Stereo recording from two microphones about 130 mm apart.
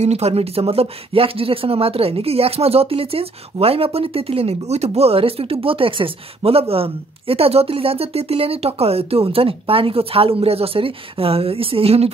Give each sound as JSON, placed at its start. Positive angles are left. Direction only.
{"t": 0.0, "sound": "speech", "side_deg": -55}